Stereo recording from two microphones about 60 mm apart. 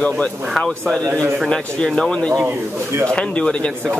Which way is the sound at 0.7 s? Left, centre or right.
Centre.